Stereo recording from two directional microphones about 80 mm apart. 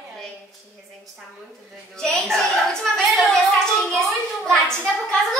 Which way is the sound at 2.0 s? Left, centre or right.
Centre.